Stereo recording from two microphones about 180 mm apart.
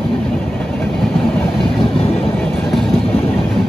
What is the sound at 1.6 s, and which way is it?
Train, 30° left (ahead or behind).